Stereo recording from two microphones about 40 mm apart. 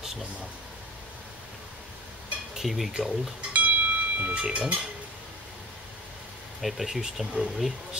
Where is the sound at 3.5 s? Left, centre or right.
Right.